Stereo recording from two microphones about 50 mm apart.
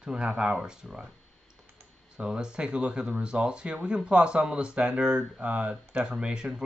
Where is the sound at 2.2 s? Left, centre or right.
Centre.